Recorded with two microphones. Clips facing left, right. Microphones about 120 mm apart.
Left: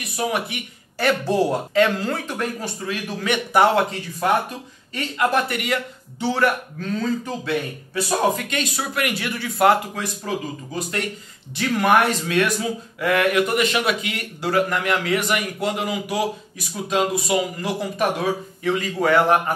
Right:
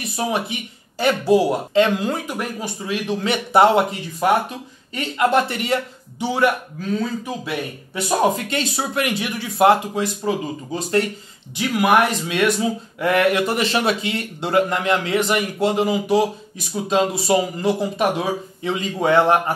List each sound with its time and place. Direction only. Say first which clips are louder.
0.0 s speech: right 1 dB; 25° right (ahead or behind)
1.2 s speech: right 4 dB; 10° right (ahead or behind)
2.9 s speech: right 3 dB; 30° right (ahead or behind)
4.2 s speech: right 2 dB; 20° right (ahead or behind)
6.1 s speech: right 1 dB; 15° right (ahead or behind)
7.9 s speech: right 2 dB; 20° right (ahead or behind)
11.5 s speech: right 1 dB; 10° right (ahead or behind)
12.3 s speech: right 2 dB; 20° right (ahead or behind)